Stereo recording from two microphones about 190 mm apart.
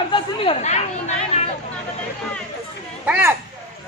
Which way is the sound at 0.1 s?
30° left (ahead or behind).